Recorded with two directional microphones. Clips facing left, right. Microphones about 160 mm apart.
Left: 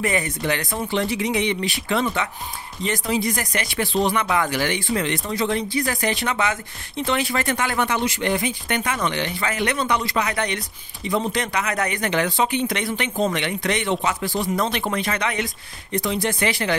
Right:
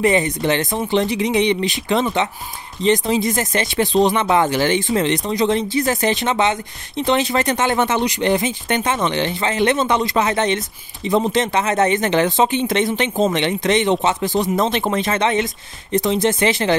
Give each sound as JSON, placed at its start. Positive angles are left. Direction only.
{"t": 0.0, "sound": "speech", "side_deg": -25}